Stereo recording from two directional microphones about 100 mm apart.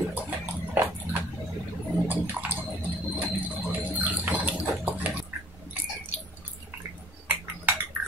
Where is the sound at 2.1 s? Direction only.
15° right (ahead or behind).